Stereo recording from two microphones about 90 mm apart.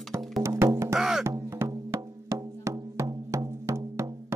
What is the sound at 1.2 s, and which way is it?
Music, 30° right (ahead or behind).